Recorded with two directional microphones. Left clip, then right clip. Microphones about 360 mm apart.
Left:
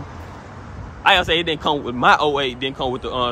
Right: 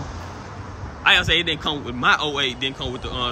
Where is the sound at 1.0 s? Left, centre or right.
Centre.